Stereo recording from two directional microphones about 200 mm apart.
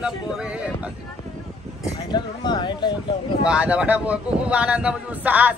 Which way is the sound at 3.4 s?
5° right (ahead or behind).